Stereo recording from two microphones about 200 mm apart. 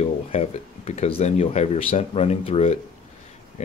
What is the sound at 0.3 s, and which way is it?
Speech, 30° left (ahead or behind).